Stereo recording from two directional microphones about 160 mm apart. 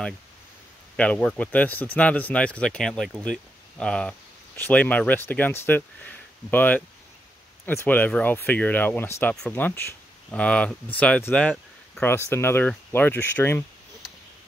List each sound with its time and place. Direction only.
0.9 s speech: 10° left (ahead or behind)